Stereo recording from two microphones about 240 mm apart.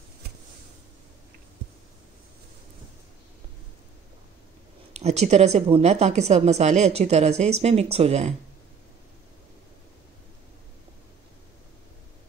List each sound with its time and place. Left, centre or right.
4.9 s a woman's voice: right